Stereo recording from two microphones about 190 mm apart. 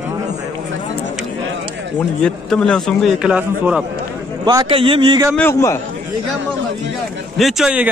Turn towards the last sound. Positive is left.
turn(degrees=-5)  # may be behind; listen again after turning